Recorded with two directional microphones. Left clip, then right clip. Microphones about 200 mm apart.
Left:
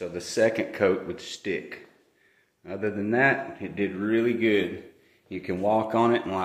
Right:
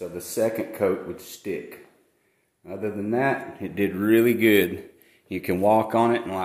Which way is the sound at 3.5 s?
45° right (ahead or behind).